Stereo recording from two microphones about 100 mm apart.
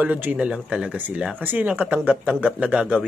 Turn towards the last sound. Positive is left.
turn(degrees=-10)  # may be behind; listen again after turning